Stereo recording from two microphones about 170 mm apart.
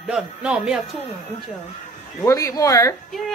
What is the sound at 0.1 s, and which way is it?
Speech, 5° right (ahead or behind).